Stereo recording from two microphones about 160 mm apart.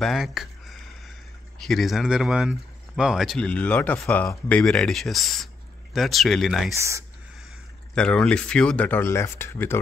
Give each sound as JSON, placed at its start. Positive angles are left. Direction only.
{"t": 0.0, "sound": "a sound", "side_deg": 0}
{"t": 1.6, "sound": "speech", "side_deg": 0}
{"t": 6.7, "sound": "speech", "side_deg": -20}
{"t": 7.9, "sound": "speech", "side_deg": 5}